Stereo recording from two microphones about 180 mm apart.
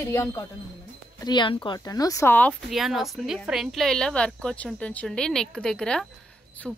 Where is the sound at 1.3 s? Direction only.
25° left (ahead or behind).